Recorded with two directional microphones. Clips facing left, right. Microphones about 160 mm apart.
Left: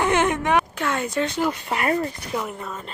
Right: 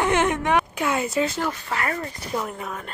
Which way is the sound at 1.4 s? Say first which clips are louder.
Left 3 dB; 20° left (ahead or behind).